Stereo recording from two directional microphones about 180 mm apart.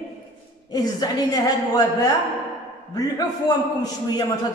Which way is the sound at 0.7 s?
20° left (ahead or behind).